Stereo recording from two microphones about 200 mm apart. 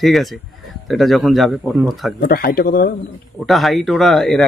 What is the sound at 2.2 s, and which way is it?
Speech, 50° left (ahead or behind).